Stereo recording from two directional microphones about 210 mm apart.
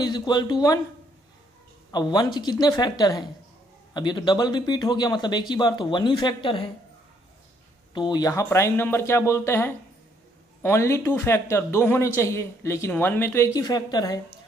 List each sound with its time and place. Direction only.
0.0 s speech: 20° left (ahead or behind)
1.9 s speech: 20° left (ahead or behind)
7.9 s a man's voice: 20° left (ahead or behind)